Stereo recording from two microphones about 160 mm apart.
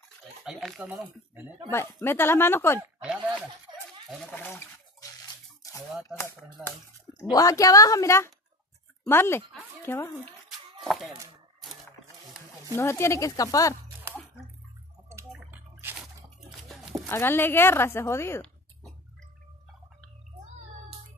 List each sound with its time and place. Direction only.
0.4 s speech: centre (ahead or behind)
1.7 s a woman's voice: 15° left (ahead or behind)
2.8 s speech: 5° right (ahead or behind)
4.3 s a sound: 15° left (ahead or behind)
7.2 s a woman's voice: 25° left (ahead or behind)
10.8 s speech: centre (ahead or behind)
12.7 s speech: 15° left (ahead or behind)
15.0 s a sound: 15° right (ahead or behind)
16.6 s a sound: centre (ahead or behind)
17.1 s a woman's voice: 15° left (ahead or behind)